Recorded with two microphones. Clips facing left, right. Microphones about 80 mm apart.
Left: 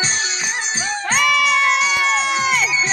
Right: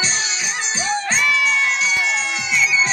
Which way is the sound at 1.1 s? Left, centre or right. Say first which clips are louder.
Left 5 dB; left.